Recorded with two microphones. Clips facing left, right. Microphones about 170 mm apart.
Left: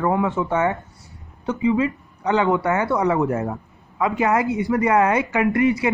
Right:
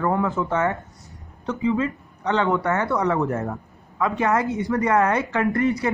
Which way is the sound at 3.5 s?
20° left (ahead or behind).